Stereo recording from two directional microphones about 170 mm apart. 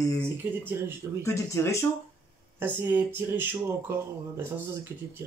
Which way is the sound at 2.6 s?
10° right (ahead or behind).